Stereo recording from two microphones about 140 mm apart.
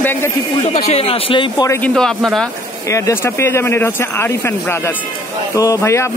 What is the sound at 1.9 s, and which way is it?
Speech, centre (ahead or behind).